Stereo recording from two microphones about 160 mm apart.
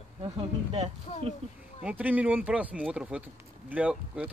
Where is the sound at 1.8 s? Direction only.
10° right (ahead or behind).